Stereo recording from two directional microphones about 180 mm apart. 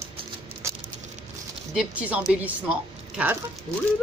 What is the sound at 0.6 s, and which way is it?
Patter, 15° right (ahead or behind).